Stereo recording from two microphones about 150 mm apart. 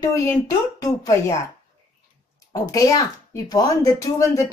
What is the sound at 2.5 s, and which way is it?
A woman's voice, 25° left (ahead or behind).